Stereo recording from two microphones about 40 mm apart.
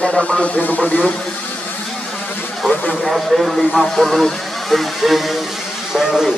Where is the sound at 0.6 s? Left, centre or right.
Left.